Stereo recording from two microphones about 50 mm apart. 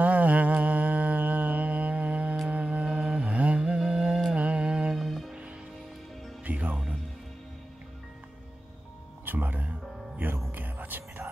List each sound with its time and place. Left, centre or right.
0.0 s mantra: right
2.5 s music: right
4.4 s mantra: right
4.9 s music: centre
6.4 s music: right
9.2 s music: right